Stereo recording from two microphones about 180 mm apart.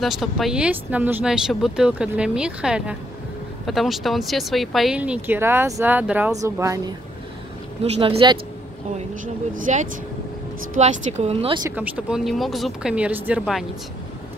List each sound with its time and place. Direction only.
0.0 s speech: centre (ahead or behind); by 6.9 s 20° right (ahead or behind)
8.0 s speech: 30° right (ahead or behind)
9.5 s speech: 45° right (ahead or behind); by 11.6 s 30° right (ahead or behind)
11.7 s speech: 10° right (ahead or behind)